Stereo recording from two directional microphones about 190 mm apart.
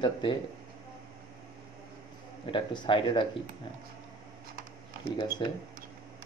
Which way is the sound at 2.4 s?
25° left (ahead or behind).